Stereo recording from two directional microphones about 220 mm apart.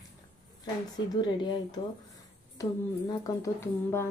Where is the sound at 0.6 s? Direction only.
20° left (ahead or behind).